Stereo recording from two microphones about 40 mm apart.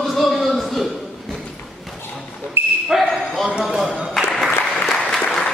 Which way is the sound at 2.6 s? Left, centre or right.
Right.